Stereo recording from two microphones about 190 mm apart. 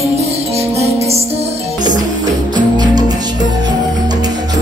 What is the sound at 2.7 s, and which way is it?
Music, 20° right (ahead or behind).